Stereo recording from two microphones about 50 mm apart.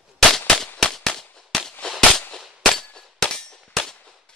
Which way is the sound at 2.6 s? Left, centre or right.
Centre.